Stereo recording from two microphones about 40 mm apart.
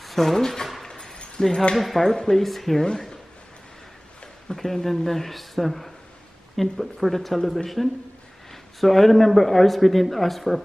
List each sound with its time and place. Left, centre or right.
0.0 s speech: centre
0.8 s a sound: centre
1.8 s a man's voice: centre
4.6 s a man's voice: centre